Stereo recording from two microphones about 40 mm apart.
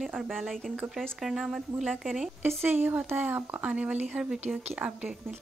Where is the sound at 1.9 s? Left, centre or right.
Centre.